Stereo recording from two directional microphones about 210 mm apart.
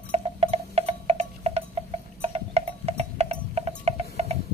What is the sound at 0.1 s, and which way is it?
Tick-tock, 30° right (ahead or behind).